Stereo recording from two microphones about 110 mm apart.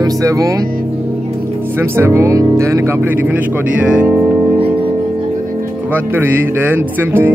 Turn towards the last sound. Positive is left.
turn(degrees=-20)  # may be behind; listen again after turning